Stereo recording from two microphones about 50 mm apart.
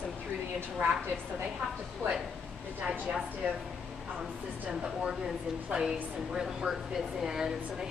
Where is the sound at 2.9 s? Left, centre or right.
Centre.